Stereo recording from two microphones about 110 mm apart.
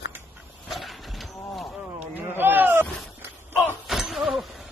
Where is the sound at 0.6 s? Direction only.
Centre (ahead or behind).